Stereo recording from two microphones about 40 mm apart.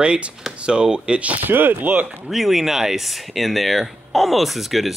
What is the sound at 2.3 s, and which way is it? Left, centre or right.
Speech, centre.